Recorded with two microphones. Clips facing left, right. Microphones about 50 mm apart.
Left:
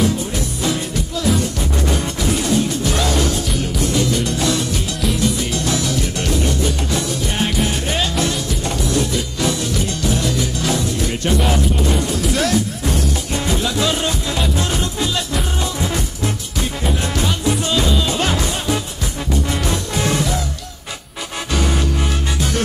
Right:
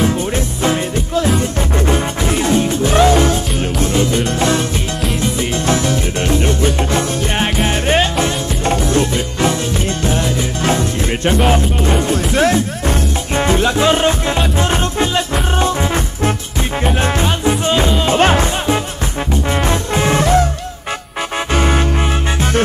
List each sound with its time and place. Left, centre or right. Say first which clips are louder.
0.0 s music: right 3 dB; right
21.5 s music: right 3 dB; right